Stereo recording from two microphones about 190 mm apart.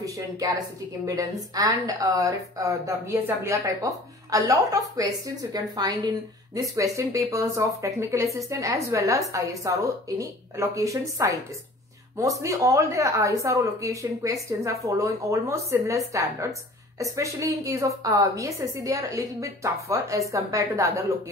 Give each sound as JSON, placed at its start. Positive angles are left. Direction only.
{"t": 0.4, "sound": "a woman's voice", "side_deg": -20}